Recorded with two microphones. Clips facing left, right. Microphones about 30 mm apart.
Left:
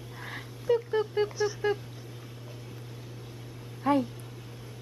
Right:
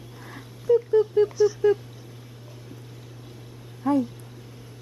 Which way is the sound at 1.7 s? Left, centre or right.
Left.